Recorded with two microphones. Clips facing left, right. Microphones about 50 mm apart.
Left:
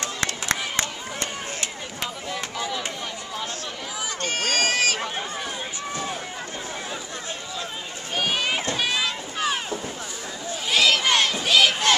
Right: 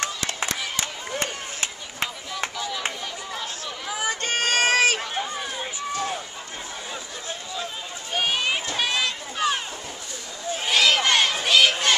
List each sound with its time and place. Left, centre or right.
1.2 s run: right
2.5 s a sound: centre
4.1 s run: right
5.1 s run: centre
8.2 s children playing: centre
8.7 s a sound: centre
11.4 s crowd: centre